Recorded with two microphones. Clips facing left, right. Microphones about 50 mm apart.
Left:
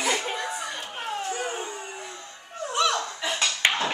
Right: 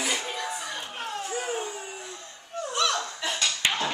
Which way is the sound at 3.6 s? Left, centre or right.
Left.